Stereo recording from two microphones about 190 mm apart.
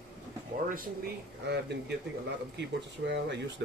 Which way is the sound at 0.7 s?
50° right (ahead or behind).